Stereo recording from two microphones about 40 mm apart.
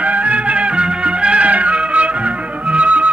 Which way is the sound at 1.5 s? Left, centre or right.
Right.